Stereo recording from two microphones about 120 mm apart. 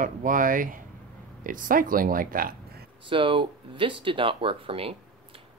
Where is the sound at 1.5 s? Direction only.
90° right.